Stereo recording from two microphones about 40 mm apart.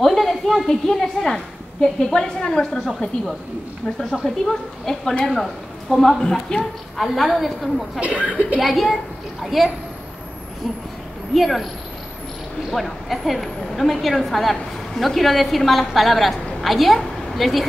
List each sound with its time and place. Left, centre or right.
0.0 s a sound: centre
0.7 s a woman's voice: centre
4.2 s a woman's voice: centre
6.5 s a woman's voice: centre
7.0 s a woman's voice: centre
8.0 s speech: right
8.5 s a woman's voice: centre
11.3 s a woman's voice: centre
12.7 s a woman's voice: centre